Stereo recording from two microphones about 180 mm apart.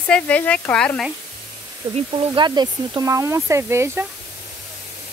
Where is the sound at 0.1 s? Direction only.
5° left (ahead or behind).